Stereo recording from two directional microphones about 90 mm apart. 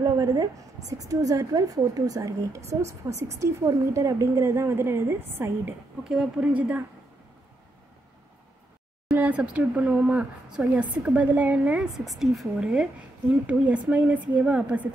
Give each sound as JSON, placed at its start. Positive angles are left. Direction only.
{"t": 0.0, "sound": "a woman's voice", "side_deg": -40}
{"t": 6.0, "sound": "speech", "side_deg": -10}
{"t": 9.0, "sound": "speech", "side_deg": -20}
{"t": 11.9, "sound": "a woman's voice", "side_deg": -5}